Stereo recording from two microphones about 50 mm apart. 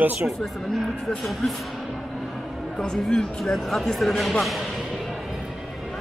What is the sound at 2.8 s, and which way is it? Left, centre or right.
Speech, centre.